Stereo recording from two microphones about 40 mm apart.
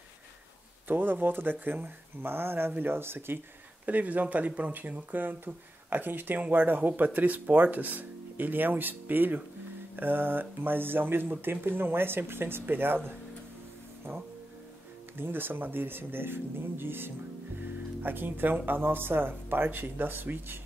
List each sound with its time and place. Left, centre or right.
0.8 s speech: right
3.8 s speech: right
15.1 s speech: right
18.0 s speech: right